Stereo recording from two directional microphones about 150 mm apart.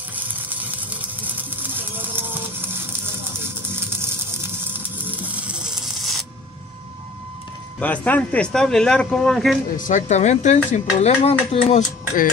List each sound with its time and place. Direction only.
0.1 s a sound: 10° right (ahead or behind)
7.8 s speech: 10° left (ahead or behind)
9.8 s speech: 55° left (ahead or behind)
11.6 s speech: 60° left (ahead or behind)